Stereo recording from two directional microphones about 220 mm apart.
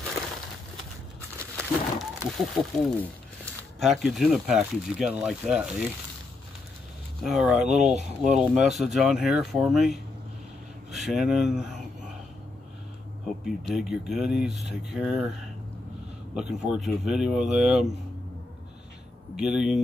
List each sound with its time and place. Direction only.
1.6 s wild animals: centre (ahead or behind)
3.8 s speech: centre (ahead or behind)
7.2 s speech: centre (ahead or behind)
7.5 s speech: 30° right (ahead or behind)
8.6 s speech: centre (ahead or behind)
13.7 s speech: centre (ahead or behind)
16.3 s speech: 5° right (ahead or behind)
19.3 s speech: 5° right (ahead or behind)